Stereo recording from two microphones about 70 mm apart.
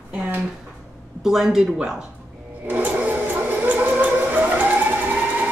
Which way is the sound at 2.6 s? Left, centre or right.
Right.